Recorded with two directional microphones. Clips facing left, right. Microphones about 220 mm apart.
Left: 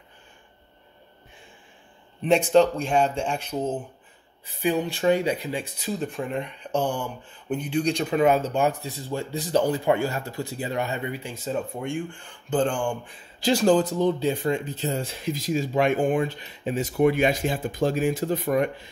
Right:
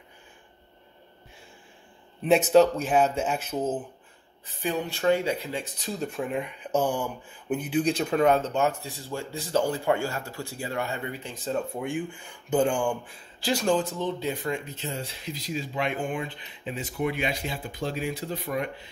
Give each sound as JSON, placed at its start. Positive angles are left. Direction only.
{"t": 2.5, "sound": "speech", "side_deg": -5}
{"t": 4.6, "sound": "speech", "side_deg": 15}
{"t": 13.7, "sound": "speech", "side_deg": 35}